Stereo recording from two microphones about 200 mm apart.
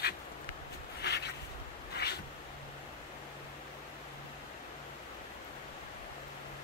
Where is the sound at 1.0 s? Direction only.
55° left (ahead or behind).